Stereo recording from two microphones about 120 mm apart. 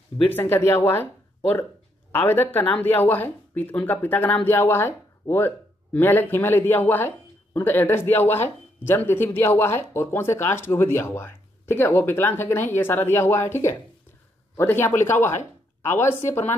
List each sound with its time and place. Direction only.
0.3 s speech: 20° left (ahead or behind)
2.2 s a man's voice: 15° left (ahead or behind)